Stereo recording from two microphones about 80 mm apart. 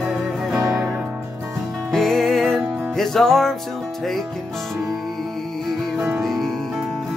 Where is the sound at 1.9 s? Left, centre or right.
Centre.